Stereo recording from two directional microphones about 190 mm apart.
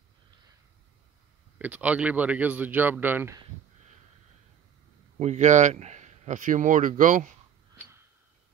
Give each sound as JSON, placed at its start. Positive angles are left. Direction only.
{"t": 1.6, "sound": "speech", "side_deg": -10}
{"t": 5.2, "sound": "speech", "side_deg": -40}